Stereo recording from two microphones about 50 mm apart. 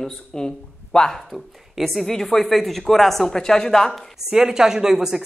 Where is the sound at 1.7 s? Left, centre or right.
Centre.